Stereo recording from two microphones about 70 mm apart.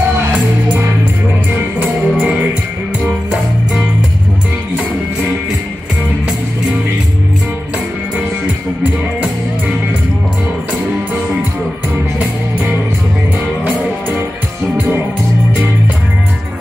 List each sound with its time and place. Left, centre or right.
1.8 s music: right